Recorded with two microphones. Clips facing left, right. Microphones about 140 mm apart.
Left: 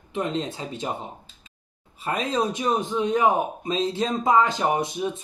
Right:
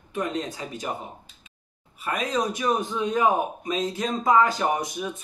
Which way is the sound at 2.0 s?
30° left (ahead or behind).